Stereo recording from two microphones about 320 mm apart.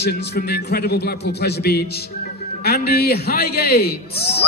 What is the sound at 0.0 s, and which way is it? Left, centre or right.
A man's voice, left.